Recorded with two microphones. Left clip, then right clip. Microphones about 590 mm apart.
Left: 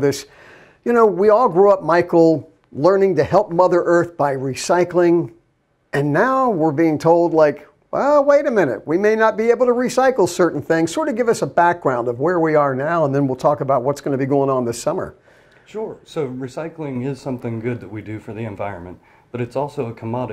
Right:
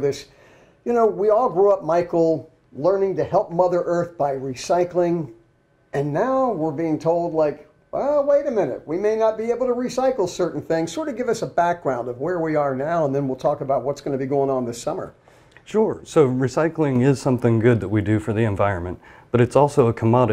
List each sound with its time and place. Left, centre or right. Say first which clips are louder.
0.0 s speech: left 4 dB; left
15.7 s speech: right 8 dB; right